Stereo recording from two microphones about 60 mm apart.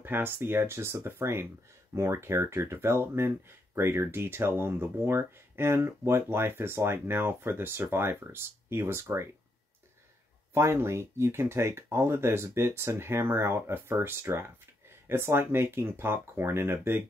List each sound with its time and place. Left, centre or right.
0.0 s speech: right
10.5 s speech: right